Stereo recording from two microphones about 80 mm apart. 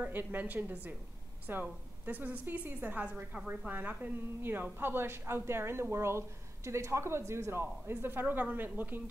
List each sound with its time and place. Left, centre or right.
0.0 s a woman's voice: right